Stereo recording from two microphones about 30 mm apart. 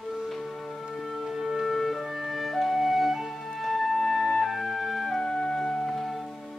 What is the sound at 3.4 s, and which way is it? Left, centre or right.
Music, centre.